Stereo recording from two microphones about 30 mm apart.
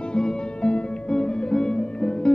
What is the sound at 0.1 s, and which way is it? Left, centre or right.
Music, left.